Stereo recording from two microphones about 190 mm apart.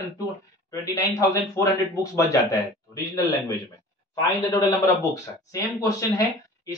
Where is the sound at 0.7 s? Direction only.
15° left (ahead or behind).